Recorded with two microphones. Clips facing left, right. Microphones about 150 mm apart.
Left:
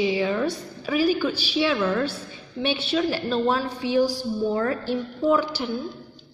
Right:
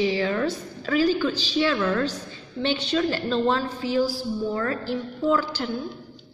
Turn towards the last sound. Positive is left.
turn(degrees=15)  # may be behind; listen again after turning